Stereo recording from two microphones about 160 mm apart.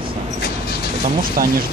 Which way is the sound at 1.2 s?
60° right (ahead or behind).